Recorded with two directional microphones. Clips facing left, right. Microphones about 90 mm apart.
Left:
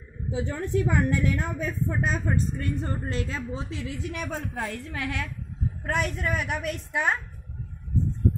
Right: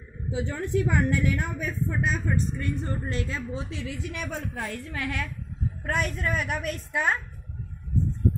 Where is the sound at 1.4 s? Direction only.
25° left (ahead or behind).